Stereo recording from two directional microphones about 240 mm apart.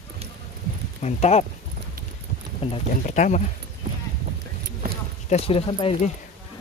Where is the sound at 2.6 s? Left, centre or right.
Left.